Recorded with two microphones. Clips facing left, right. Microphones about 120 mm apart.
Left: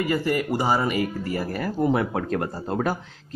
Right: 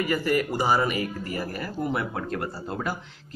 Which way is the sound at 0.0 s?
25° left (ahead or behind).